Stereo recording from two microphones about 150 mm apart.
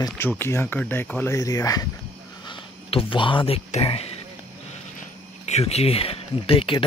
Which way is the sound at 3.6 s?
45° left (ahead or behind).